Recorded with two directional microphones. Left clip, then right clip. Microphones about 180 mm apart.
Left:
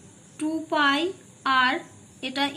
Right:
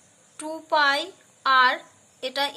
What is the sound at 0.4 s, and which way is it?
A woman's voice, 45° right (ahead or behind).